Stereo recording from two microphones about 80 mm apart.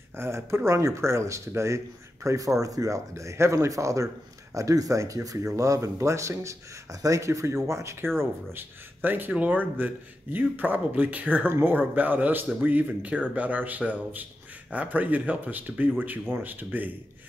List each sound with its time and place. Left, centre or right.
0.1 s speech: right
8.2 s speech: right